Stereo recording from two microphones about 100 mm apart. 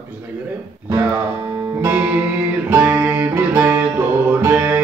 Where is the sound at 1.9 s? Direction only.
20° right (ahead or behind).